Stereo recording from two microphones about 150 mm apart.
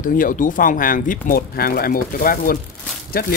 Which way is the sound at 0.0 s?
65° left (ahead or behind).